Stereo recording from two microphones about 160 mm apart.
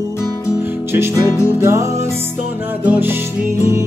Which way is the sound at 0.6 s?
15° right (ahead or behind).